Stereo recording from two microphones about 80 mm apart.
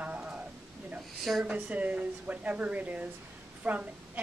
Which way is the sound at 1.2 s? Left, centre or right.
Centre.